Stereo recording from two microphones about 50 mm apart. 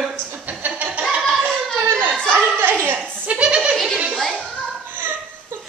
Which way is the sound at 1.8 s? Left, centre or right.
Right.